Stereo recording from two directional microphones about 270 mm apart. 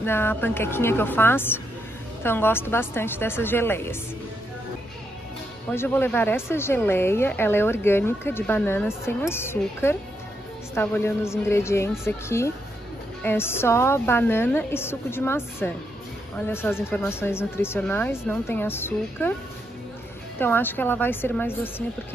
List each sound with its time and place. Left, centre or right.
0.0 s speech: centre
5.7 s speech: centre
20.3 s speech: centre